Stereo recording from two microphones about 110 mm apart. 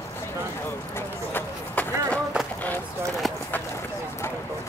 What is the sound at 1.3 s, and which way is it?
Run, 15° left (ahead or behind).